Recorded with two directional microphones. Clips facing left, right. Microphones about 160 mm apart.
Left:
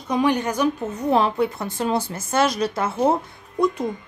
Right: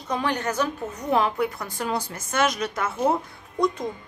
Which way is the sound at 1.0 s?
30° left (ahead or behind).